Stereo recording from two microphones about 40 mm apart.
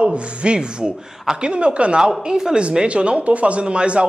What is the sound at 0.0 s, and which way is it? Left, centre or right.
A man's voice, right.